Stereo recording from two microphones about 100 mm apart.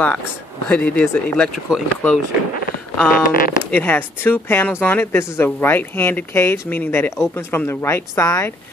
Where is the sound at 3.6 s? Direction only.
20° left (ahead or behind).